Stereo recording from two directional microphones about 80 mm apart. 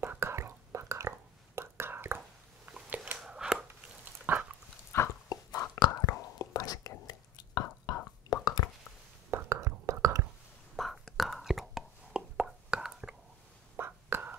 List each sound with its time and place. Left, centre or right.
0.0 s whispering: right
3.3 s chopping: centre
4.3 s dog: right
4.9 s a sound: left
5.3 s a sound: left
5.8 s whispering: left
9.3 s whispering: right
10.8 s whispering: centre
13.7 s whispering: right